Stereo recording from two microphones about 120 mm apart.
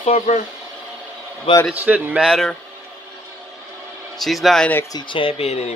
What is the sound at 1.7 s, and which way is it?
Speech, 15° right (ahead or behind).